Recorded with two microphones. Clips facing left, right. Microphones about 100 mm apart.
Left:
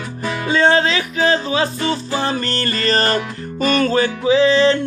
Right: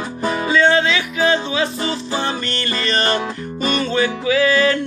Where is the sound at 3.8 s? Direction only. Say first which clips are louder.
Left 2 dB; 35° left (ahead or behind).